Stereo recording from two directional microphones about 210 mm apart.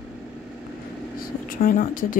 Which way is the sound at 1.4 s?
45° left (ahead or behind).